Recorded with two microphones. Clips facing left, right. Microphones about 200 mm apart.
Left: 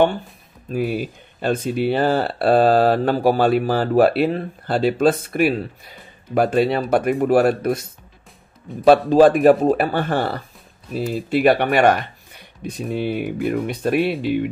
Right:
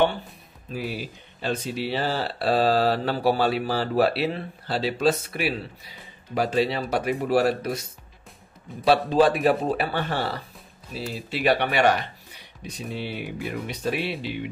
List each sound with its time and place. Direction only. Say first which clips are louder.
0.7 s speech: left 9 dB; 50° left (ahead or behind)
8.8 s speech: left 7 dB; 50° left (ahead or behind)